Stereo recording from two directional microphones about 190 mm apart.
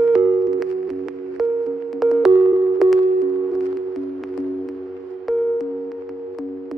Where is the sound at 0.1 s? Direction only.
Centre (ahead or behind).